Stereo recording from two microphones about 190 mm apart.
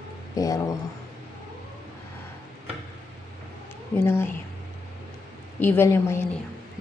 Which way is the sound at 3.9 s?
10° left (ahead or behind).